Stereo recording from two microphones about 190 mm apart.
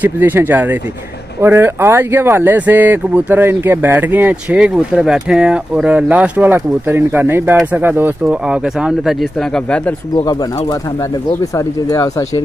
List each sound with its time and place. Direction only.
0.0 s speech: 10° right (ahead or behind)
10.1 s speech: 20° left (ahead or behind)